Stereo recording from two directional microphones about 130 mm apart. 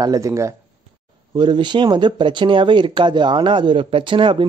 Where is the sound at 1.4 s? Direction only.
35° right (ahead or behind).